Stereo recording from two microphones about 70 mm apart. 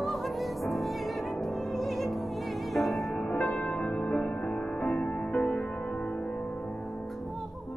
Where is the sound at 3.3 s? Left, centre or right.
Left.